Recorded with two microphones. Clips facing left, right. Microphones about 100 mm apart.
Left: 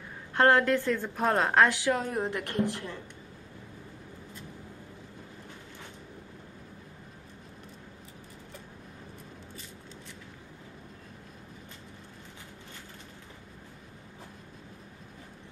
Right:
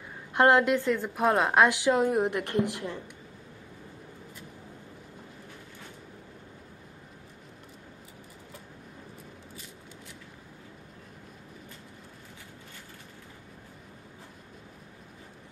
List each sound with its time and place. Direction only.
0.3 s a woman's voice: 15° right (ahead or behind)